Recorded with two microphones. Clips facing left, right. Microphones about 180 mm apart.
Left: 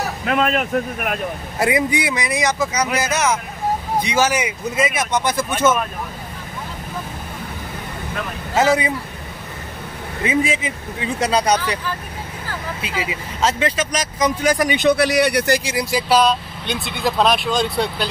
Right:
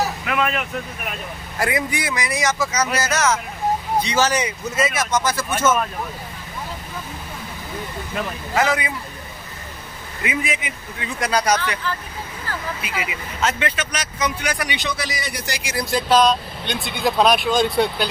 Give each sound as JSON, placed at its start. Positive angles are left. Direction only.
{"t": 0.2, "sound": "speech", "side_deg": 35}
{"t": 1.6, "sound": "speech", "side_deg": 20}
{"t": 8.5, "sound": "speech", "side_deg": 25}
{"t": 10.2, "sound": "speech", "side_deg": 30}
{"t": 12.8, "sound": "speech", "side_deg": 30}
{"t": 15.7, "sound": "speech", "side_deg": 10}